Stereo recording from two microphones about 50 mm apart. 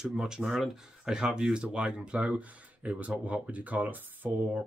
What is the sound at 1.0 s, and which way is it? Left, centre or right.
Speech, centre.